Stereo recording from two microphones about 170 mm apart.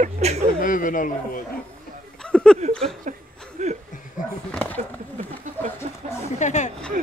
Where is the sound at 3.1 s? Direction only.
45° right (ahead or behind).